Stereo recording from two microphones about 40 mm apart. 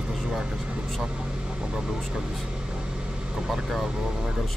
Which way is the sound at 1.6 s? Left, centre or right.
Centre.